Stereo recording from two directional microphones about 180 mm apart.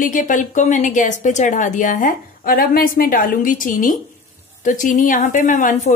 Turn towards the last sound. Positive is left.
turn(degrees=45)  # may be behind; listen again after turning